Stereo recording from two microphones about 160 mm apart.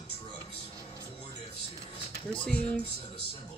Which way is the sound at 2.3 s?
5° left (ahead or behind).